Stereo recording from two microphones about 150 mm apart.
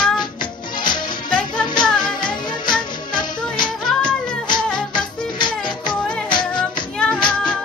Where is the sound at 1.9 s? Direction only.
30° left (ahead or behind).